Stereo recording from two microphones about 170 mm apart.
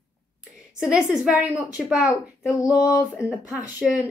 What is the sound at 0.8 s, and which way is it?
A woman's voice, 5° right (ahead or behind).